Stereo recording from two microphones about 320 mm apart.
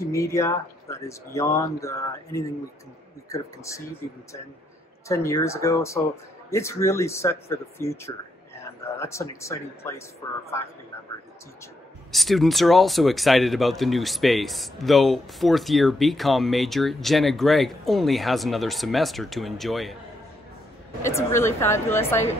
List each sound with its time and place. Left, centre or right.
0.1 s speech: centre
5.0 s speech: centre
12.1 s speech: centre
21.0 s speech: centre